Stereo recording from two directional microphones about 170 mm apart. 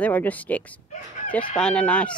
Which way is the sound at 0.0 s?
10° left (ahead or behind).